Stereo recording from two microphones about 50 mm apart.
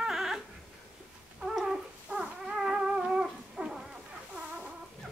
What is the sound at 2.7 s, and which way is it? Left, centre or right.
Music, centre.